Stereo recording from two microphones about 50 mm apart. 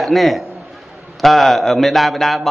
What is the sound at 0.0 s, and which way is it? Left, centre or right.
A man's voice, centre.